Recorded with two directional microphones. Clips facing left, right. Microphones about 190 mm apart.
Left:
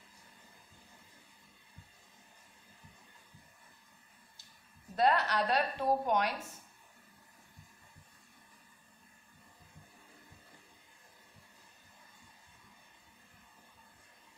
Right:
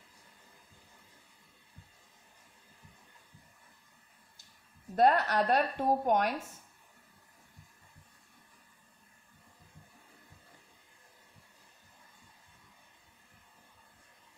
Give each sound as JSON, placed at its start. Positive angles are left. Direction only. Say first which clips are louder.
{"t": 4.9, "sound": "a woman's voice", "louder": "right 4 dB", "side_deg": -50}